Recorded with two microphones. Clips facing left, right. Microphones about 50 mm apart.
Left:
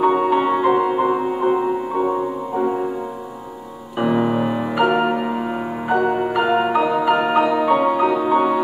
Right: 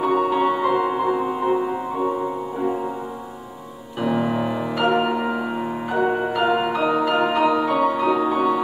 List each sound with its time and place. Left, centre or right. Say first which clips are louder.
0.0 s music: left 3 dB; centre
4.2 s music: left 3 dB; centre
6.1 s music: left 2 dB; centre